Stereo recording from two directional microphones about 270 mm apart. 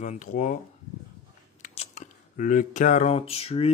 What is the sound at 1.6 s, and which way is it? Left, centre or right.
Speech, left.